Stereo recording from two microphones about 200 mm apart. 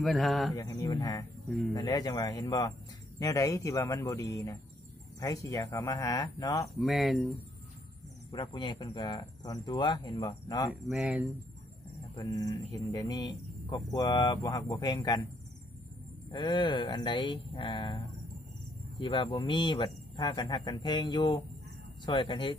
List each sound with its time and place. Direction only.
0.0 s speech: centre (ahead or behind)
0.6 s speech: 15° left (ahead or behind)
6.8 s speech: centre (ahead or behind)
8.3 s speech: 25° left (ahead or behind)
10.9 s speech: 5° right (ahead or behind)
12.2 s speech: 20° left (ahead or behind)
16.3 s speech: 20° left (ahead or behind)